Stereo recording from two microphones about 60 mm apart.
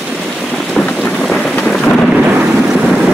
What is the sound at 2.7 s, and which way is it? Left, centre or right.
Boat, centre.